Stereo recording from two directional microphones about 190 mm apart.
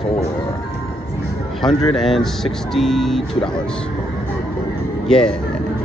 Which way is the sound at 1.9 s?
Centre (ahead or behind).